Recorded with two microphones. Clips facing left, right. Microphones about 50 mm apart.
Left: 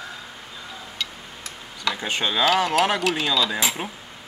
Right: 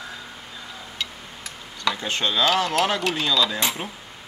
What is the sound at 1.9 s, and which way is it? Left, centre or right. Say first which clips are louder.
Speech: left 2 dB; centre.